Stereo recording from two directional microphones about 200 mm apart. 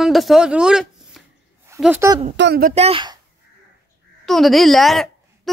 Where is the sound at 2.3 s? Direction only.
55° right (ahead or behind).